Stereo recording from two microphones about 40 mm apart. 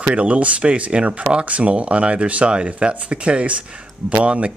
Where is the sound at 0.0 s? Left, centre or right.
Right.